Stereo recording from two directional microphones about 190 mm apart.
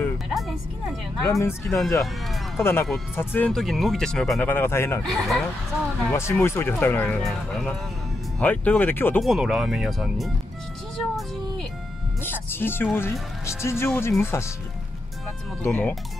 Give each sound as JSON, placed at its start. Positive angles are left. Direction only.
{"t": 0.0, "sound": "music", "side_deg": 0}
{"t": 1.2, "sound": "speech", "side_deg": 15}
{"t": 5.0, "sound": "speech", "side_deg": 0}
{"t": 6.0, "sound": "speech", "side_deg": 15}
{"t": 9.2, "sound": "speech", "side_deg": 0}
{"t": 11.0, "sound": "music", "side_deg": 0}
{"t": 12.9, "sound": "speech", "side_deg": 15}
{"t": 15.6, "sound": "speech", "side_deg": 5}